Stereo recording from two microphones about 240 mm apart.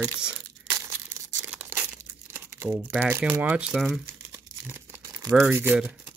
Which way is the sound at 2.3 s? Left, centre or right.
Centre.